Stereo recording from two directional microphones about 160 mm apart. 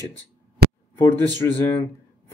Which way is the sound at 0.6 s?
90° right.